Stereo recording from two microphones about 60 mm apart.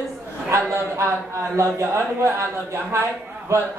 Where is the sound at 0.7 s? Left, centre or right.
Right.